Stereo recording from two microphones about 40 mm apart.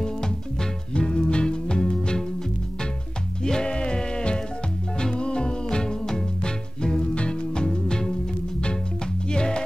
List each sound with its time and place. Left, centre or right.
0.9 s music: centre
3.4 s music: left
9.3 s music: left